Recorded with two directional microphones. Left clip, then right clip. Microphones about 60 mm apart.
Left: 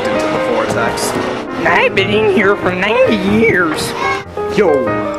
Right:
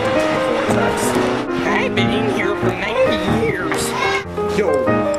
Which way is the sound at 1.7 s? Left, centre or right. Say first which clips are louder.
Left 8 dB; left.